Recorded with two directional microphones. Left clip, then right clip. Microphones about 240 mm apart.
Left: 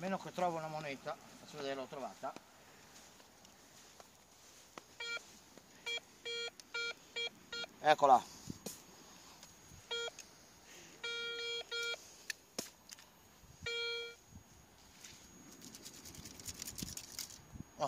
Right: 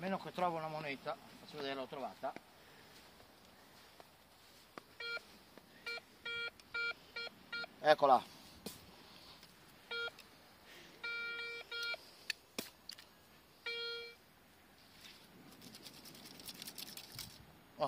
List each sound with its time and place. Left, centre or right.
0.0 s speech: left
4.9 s telephone dialing: left
9.8 s beep: left
11.0 s music: left
12.3 s chop: centre
13.7 s a sound: left
16.8 s a sound: centre